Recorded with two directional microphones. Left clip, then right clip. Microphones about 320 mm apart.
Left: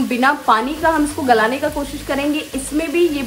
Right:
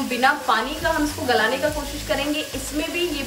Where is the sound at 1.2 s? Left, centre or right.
Centre.